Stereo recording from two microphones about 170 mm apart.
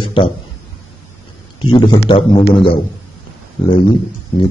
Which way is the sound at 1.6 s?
25° left (ahead or behind).